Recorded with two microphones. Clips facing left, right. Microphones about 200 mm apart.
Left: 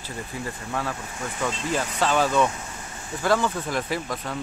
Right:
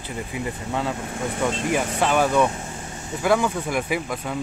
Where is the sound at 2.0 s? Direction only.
15° right (ahead or behind).